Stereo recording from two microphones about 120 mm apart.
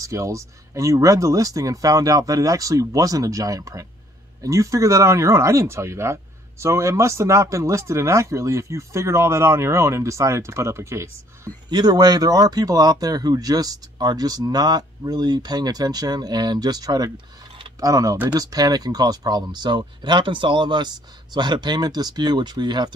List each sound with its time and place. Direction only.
0.0 s speech: 25° right (ahead or behind)
11.7 s speech: 35° right (ahead or behind)